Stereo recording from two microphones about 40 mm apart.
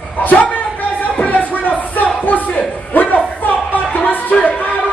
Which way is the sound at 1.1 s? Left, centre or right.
Left.